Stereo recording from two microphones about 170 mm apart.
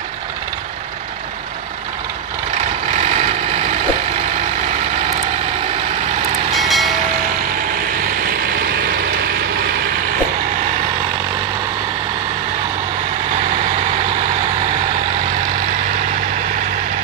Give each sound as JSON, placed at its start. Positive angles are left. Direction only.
{"t": 3.0, "sound": "vehicle", "side_deg": -40}
{"t": 6.5, "sound": "vehicle", "side_deg": 0}
{"t": 8.3, "sound": "vehicle", "side_deg": -60}